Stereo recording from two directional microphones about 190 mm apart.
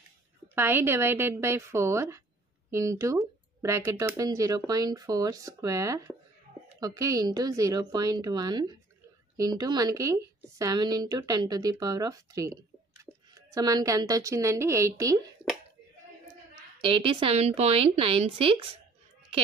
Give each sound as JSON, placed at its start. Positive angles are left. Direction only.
{"t": 0.6, "sound": "a woman's voice", "side_deg": -10}
{"t": 16.8, "sound": "a woman's voice", "side_deg": -25}